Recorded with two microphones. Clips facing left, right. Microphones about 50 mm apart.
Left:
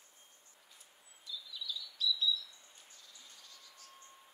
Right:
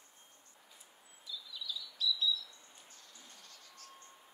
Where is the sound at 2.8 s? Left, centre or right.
Right.